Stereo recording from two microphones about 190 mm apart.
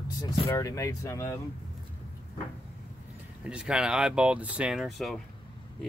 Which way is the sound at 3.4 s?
5° right (ahead or behind).